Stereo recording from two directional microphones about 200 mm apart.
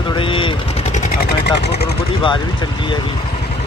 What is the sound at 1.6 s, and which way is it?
Speech, 55° left (ahead or behind).